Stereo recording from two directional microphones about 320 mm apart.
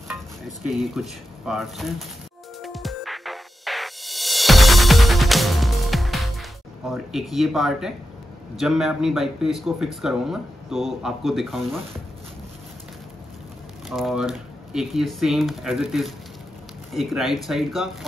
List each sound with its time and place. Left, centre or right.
0.6 s speech: centre
2.6 s music: centre
6.9 s speech: centre
13.8 s speech: centre